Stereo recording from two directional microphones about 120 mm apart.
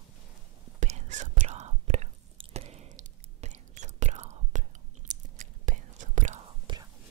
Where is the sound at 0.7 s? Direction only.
75° right (ahead or behind).